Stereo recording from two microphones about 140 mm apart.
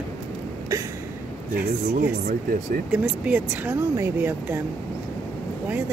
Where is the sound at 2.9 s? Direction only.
10° right (ahead or behind).